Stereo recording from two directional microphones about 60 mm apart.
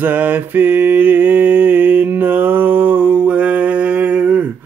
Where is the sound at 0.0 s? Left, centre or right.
Right.